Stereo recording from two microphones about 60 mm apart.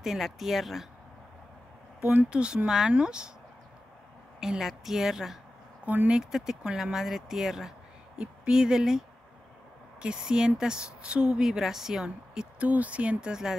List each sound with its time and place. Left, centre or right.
0.0 s a woman's voice: centre
2.1 s a woman's voice: centre
4.4 s a woman's voice: centre
5.9 s speech: right
6.1 s a woman's voice: centre
10.0 s a woman's voice: centre
12.6 s speech: right